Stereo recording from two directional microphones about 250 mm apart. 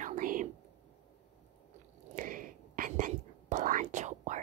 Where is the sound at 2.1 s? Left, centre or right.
Right.